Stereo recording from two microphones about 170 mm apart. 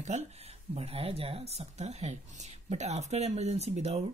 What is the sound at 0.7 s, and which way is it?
Speech, 35° right (ahead or behind).